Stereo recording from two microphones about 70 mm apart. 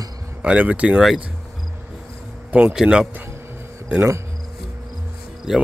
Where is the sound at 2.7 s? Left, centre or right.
Centre.